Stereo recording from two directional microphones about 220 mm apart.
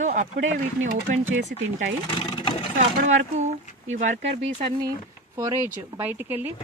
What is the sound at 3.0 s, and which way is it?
Speech, 30° right (ahead or behind).